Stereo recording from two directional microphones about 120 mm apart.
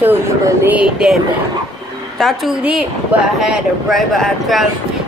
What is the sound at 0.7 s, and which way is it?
Speech, 10° right (ahead or behind).